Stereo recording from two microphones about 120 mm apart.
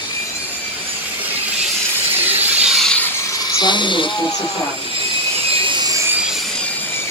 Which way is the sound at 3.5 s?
40° left (ahead or behind).